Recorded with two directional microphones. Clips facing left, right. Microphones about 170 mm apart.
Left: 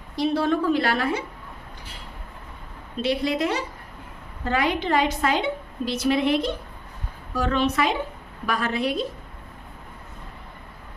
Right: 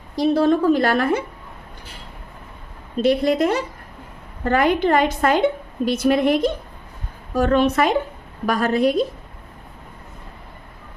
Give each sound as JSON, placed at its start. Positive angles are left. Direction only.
{"t": 0.1, "sound": "a woman's voice", "side_deg": -40}
{"t": 3.0, "sound": "a woman's voice", "side_deg": -50}